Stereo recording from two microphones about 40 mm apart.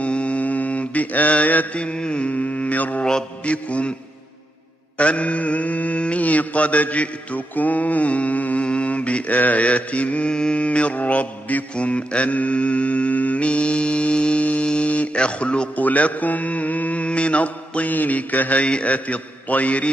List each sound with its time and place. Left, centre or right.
0.0 s mantra: left
1.8 s mantra: left
3.0 s mantra: centre
3.4 s mantra: left
4.9 s mantra: left
14.7 s a sound: left
15.7 s mantra: left
18.6 s mantra: left